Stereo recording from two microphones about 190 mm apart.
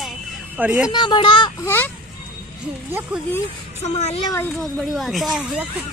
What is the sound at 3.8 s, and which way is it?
Speech, 35° left (ahead or behind).